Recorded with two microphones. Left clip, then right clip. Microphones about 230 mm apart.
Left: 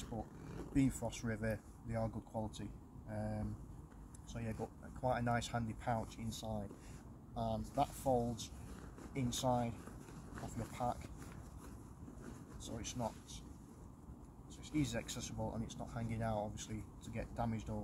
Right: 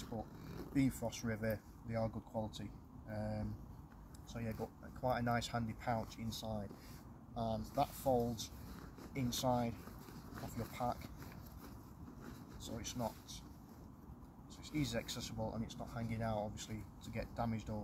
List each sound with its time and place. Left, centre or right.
0.0 s speech: centre
12.6 s speech: centre
14.7 s speech: centre